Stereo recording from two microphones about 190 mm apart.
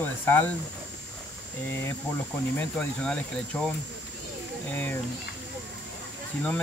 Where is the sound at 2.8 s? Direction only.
5° left (ahead or behind).